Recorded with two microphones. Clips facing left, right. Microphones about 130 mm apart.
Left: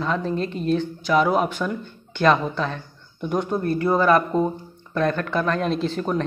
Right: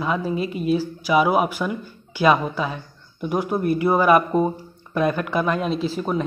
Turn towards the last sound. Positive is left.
turn(degrees=-5)  # may be behind; listen again after turning